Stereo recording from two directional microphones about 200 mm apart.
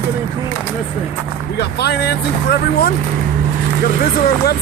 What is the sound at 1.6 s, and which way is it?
Speech, 55° left (ahead or behind).